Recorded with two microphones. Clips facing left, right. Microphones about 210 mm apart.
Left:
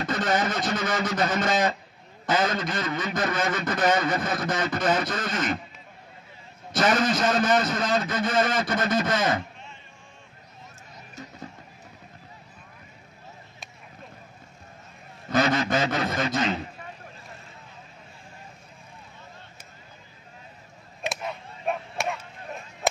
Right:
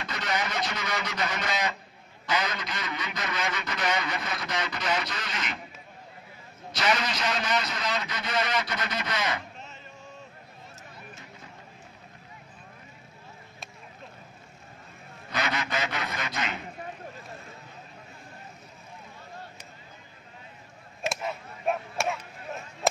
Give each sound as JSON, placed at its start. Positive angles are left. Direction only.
{"t": 0.0, "sound": "a man's voice", "side_deg": 50}
{"t": 6.7, "sound": "a man's voice", "side_deg": 50}
{"t": 15.4, "sound": "a man's voice", "side_deg": 35}
{"t": 15.7, "sound": "a sound", "side_deg": 35}
{"t": 21.0, "sound": "chop", "side_deg": 0}